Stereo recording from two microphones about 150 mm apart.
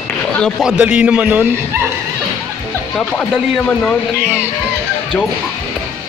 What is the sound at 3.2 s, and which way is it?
Speech, 10° left (ahead or behind).